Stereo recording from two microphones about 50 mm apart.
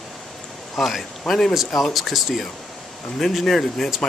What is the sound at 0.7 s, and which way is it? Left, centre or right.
Speech, centre.